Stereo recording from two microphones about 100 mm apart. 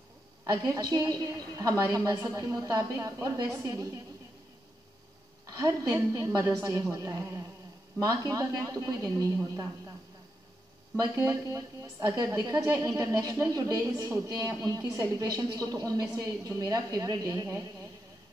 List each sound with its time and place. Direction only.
0.5 s a woman's voice: 40° right (ahead or behind)
5.6 s a woman's voice: 40° right (ahead or behind)
11.0 s a woman's voice: 40° right (ahead or behind)